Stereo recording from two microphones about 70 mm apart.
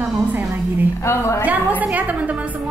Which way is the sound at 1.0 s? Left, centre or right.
Left.